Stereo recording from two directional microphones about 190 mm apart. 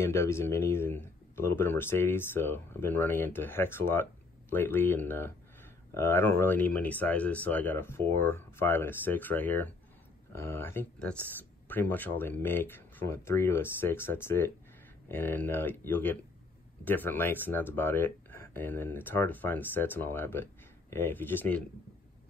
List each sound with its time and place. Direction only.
0.0 s speech: 15° left (ahead or behind)